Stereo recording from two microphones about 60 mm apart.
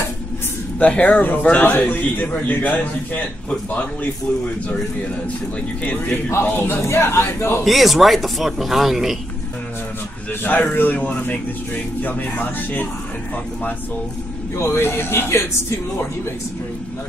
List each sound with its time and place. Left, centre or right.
0.7 s speech: left
6.4 s speech: left
6.9 s a man's voice: left
7.6 s speech: centre
10.7 s speech: left
14.6 s a man's voice: left